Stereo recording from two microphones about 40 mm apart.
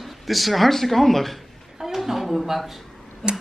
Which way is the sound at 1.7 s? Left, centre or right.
Centre.